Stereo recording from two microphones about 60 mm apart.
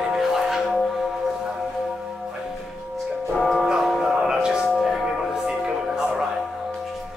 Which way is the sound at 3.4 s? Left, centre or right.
Centre.